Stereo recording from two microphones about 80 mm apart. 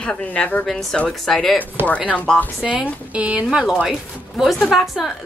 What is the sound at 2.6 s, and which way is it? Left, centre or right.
A woman's voice, centre.